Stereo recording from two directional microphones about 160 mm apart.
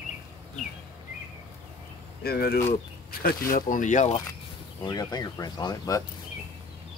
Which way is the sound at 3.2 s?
65° left (ahead or behind).